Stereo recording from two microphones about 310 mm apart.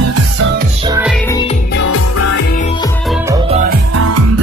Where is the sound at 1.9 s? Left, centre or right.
Left.